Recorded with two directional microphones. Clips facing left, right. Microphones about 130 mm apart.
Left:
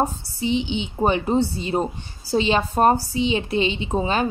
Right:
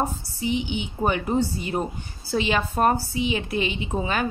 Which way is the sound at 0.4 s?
25° left (ahead or behind).